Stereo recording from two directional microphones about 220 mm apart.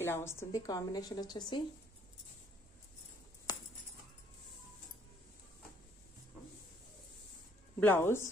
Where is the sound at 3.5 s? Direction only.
20° left (ahead or behind).